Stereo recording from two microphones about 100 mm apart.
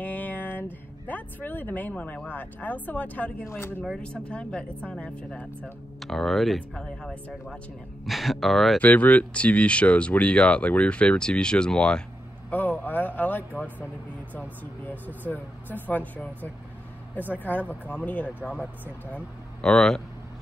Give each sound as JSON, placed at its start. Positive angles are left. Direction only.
{"t": 0.0, "sound": "a sound", "side_deg": 15}
{"t": 1.0, "sound": "speech", "side_deg": 15}
{"t": 3.4, "sound": "speech", "side_deg": 25}
{"t": 3.8, "sound": "speech", "side_deg": 5}
{"t": 8.8, "sound": "speech", "side_deg": 15}
{"t": 17.3, "sound": "speech", "side_deg": 15}